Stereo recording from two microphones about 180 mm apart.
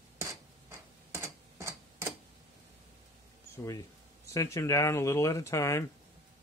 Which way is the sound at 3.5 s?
15° left (ahead or behind).